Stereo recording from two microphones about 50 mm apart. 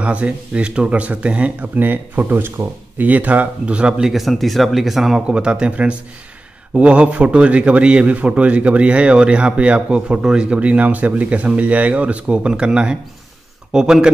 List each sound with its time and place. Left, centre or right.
0.0 s a man's voice: right
1.8 s speech: right
3.1 s a man's voice: right
4.1 s speech: centre
5.2 s a man's voice: right